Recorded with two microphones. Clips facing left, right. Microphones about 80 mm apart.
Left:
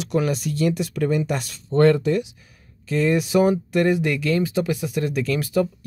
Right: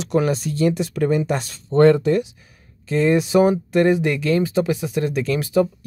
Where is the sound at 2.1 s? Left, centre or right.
Right.